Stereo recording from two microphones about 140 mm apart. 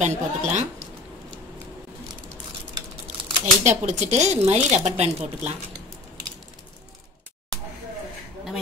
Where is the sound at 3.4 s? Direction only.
55° right (ahead or behind).